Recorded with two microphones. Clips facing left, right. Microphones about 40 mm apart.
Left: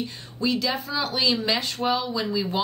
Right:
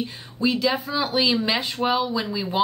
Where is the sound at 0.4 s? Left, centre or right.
Centre.